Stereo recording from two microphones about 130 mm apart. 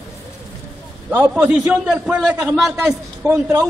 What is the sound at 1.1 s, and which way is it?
A man's voice, 15° right (ahead or behind).